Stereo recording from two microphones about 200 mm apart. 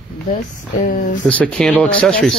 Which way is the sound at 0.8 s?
40° left (ahead or behind).